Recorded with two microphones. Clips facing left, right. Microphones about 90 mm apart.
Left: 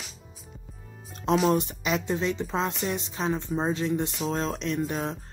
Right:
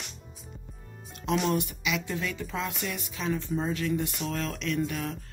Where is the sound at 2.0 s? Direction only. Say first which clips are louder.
Left 6 dB; 25° left (ahead or behind).